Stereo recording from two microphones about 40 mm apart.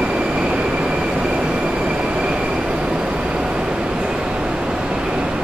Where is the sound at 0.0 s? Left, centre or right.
Right.